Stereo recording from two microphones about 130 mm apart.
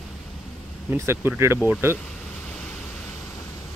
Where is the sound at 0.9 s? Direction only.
20° right (ahead or behind).